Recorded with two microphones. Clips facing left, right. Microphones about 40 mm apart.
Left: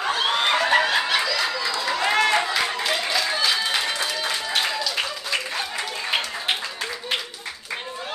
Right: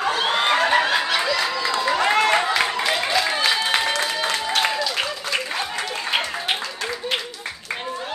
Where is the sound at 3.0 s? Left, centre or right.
Right.